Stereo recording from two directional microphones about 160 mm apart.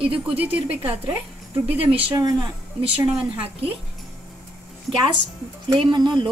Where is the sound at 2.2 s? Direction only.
25° right (ahead or behind).